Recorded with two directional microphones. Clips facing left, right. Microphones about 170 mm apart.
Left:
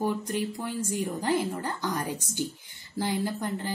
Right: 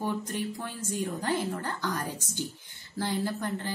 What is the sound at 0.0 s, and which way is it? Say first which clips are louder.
A woman's voice: left 3 dB; 10° left (ahead or behind).